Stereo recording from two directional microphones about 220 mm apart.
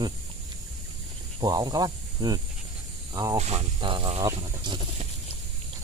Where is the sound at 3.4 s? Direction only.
30° right (ahead or behind).